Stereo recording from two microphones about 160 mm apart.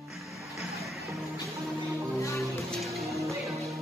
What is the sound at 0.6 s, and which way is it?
Music, centre (ahead or behind).